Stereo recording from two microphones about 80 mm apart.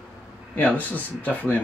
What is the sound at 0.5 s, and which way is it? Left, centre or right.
Speech, left.